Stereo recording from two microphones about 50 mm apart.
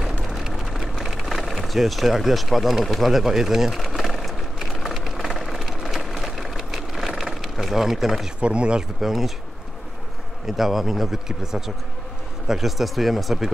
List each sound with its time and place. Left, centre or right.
0.0 s vehicle: centre
5.6 s a sound: centre
8.4 s speech: right
9.0 s speech: centre
10.4 s speech: centre